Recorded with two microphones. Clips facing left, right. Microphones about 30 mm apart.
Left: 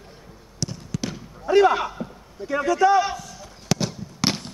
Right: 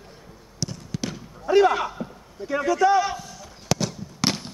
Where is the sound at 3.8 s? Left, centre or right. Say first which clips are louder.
Left 1 dB; centre.